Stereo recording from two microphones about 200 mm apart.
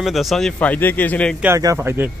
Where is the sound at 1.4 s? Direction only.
15° right (ahead or behind).